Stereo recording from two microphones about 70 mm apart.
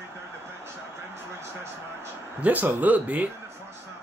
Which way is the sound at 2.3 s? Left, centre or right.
Right.